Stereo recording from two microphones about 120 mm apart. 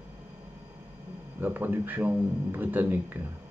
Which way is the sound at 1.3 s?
15° right (ahead or behind).